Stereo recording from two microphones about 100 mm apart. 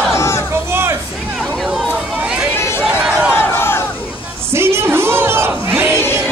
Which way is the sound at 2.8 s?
5° right (ahead or behind).